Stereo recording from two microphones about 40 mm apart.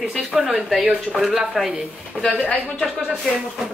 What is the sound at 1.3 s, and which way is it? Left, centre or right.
Speech, centre.